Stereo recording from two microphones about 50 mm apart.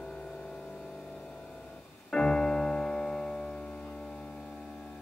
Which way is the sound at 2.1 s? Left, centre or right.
Centre.